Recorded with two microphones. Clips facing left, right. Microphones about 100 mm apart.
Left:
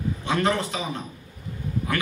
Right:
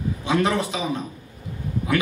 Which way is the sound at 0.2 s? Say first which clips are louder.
Right 3 dB; 15° right (ahead or behind).